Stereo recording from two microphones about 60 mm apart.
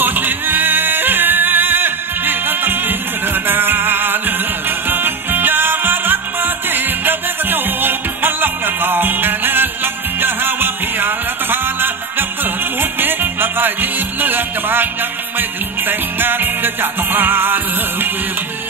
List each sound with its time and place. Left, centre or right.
0.0 s music: right
15.9 s music: right